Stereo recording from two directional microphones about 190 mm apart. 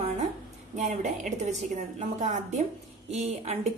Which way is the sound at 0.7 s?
40° right (ahead or behind).